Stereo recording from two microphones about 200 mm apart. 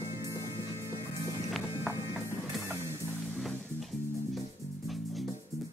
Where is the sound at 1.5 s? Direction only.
5° right (ahead or behind).